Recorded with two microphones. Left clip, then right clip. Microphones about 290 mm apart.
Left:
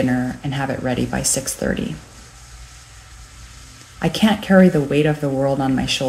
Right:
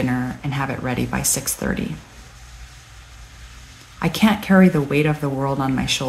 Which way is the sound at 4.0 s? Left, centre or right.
Centre.